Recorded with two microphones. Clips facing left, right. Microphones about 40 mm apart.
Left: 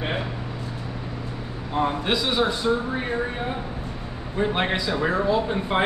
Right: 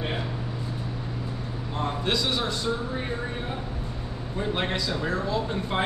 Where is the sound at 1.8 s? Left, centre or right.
Centre.